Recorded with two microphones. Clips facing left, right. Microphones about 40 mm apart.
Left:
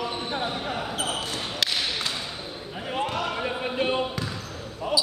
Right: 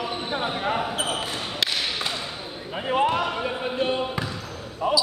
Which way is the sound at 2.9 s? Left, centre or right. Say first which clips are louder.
Right 6 dB; right.